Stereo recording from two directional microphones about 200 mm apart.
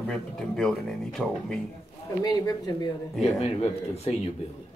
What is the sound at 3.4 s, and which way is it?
Speech, 30° left (ahead or behind).